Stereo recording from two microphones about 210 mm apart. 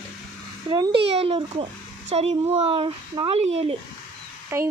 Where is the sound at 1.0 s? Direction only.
30° right (ahead or behind).